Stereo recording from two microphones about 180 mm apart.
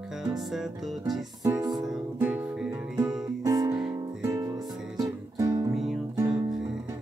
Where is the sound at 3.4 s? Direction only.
20° right (ahead or behind).